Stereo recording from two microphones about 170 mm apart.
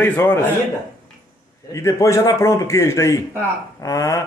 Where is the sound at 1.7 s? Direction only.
15° left (ahead or behind).